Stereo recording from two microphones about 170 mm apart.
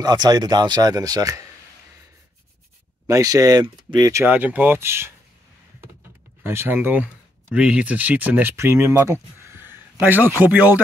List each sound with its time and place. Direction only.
0.0 s speech: 25° right (ahead or behind)
3.1 s speech: 20° right (ahead or behind)
6.4 s speech: 15° right (ahead or behind)